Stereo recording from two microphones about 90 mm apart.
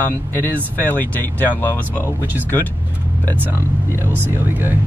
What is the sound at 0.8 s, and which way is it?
Speech, 20° left (ahead or behind).